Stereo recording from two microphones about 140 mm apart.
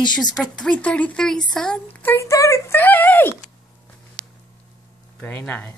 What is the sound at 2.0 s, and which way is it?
Speech, 20° left (ahead or behind).